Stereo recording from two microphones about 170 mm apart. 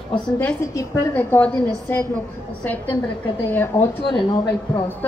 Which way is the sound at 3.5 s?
15° left (ahead or behind).